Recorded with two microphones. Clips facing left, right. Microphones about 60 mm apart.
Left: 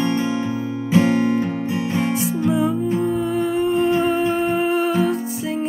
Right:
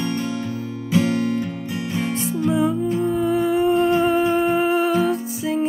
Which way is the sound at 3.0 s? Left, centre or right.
Centre.